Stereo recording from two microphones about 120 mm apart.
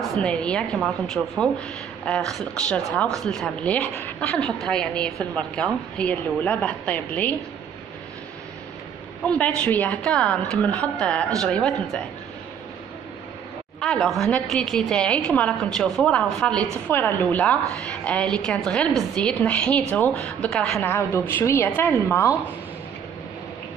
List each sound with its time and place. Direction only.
0.2 s a woman's voice: 10° left (ahead or behind)
9.2 s a woman's voice: 10° left (ahead or behind)
13.7 s a woman's voice: 5° left (ahead or behind)
20.8 s a woman's voice: 20° left (ahead or behind)